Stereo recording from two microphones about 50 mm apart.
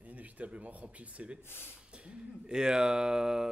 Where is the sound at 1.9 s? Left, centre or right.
Right.